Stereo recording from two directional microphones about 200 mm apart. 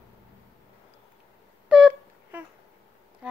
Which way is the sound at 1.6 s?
5° right (ahead or behind).